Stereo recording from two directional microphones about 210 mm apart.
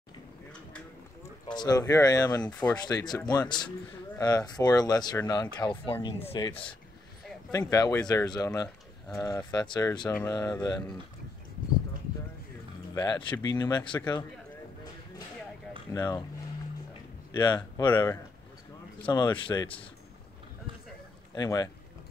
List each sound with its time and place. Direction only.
1.5 s speech: 20° left (ahead or behind)
12.9 s speech: 20° left (ahead or behind)
15.9 s speech: 15° left (ahead or behind)
17.4 s speech: 20° left (ahead or behind)
21.4 s speech: 15° left (ahead or behind)